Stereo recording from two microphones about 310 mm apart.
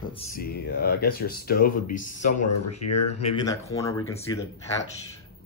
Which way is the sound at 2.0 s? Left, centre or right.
Left.